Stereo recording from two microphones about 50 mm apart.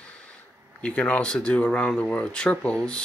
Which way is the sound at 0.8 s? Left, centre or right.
Left.